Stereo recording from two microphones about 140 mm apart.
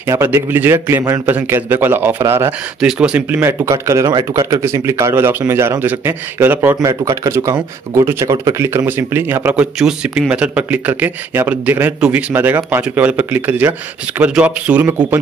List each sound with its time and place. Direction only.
0.0 s speech: 20° right (ahead or behind)
2.8 s speech: 5° right (ahead or behind)
3.3 s speech: 20° right (ahead or behind)